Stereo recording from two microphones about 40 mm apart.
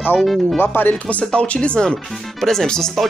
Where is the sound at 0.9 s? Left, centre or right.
Left.